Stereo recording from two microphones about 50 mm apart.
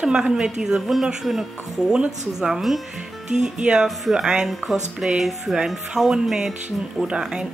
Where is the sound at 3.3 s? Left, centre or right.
Centre.